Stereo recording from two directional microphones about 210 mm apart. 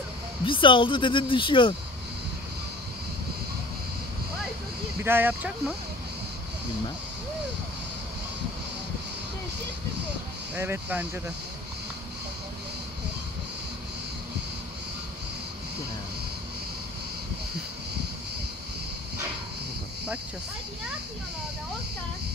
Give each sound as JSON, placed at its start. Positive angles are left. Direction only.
{"t": 0.5, "sound": "speech", "side_deg": 25}
{"t": 5.0, "sound": "speech", "side_deg": -10}
{"t": 10.5, "sound": "speech", "side_deg": -10}